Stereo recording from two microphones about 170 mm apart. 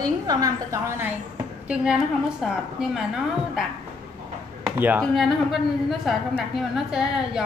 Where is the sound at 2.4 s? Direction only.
Centre (ahead or behind).